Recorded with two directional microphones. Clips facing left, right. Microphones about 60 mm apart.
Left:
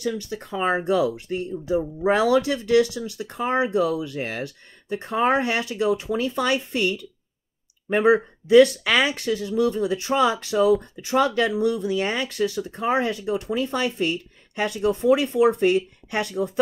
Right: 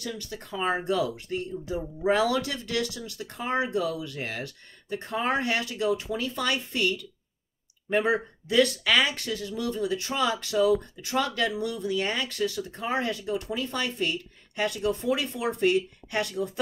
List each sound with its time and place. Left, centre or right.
0.0 s speech: left